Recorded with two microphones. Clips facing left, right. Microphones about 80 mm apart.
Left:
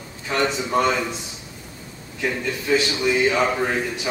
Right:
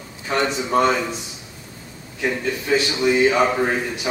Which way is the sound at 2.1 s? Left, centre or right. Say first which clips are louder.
Right 2 dB; centre.